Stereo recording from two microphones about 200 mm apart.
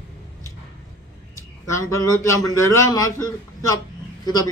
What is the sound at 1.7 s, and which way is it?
A man's voice, 15° left (ahead or behind).